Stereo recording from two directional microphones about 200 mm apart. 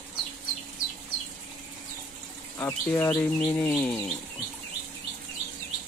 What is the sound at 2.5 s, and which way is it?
Speech, 15° left (ahead or behind).